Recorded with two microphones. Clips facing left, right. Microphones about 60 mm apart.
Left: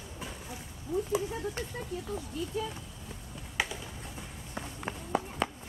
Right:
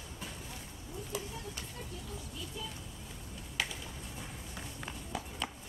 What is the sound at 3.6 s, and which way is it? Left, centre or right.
Finger snapping, centre.